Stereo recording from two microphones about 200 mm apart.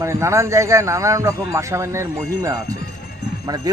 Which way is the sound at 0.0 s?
15° right (ahead or behind).